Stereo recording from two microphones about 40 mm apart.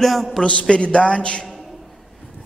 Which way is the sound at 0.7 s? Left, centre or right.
Left.